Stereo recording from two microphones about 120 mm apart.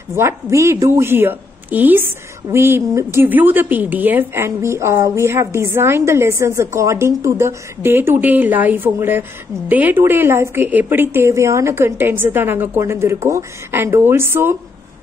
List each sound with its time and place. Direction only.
0.1 s a woman's voice: 20° right (ahead or behind)